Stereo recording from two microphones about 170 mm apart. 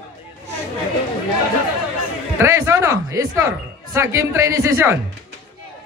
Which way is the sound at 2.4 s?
15° right (ahead or behind).